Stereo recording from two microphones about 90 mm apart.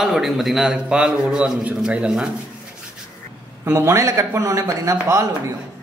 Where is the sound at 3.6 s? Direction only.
30° right (ahead or behind).